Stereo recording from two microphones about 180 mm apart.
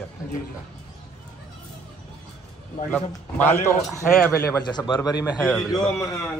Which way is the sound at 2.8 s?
10° left (ahead or behind).